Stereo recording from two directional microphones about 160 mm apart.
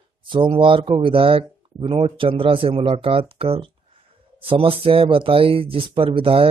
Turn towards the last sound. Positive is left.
turn(degrees=-35)  # may be behind; listen again after turning